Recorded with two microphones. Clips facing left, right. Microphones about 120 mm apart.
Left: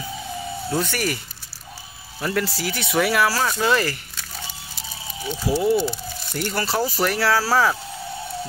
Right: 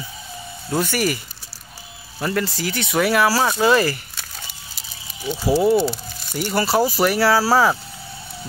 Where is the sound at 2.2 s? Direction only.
Centre (ahead or behind).